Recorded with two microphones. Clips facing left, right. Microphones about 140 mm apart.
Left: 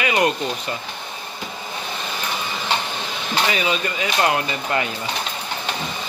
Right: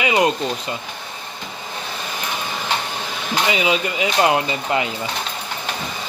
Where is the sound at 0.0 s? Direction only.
20° right (ahead or behind).